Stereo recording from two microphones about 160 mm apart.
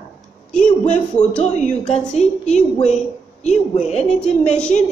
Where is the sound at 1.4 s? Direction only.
45° left (ahead or behind).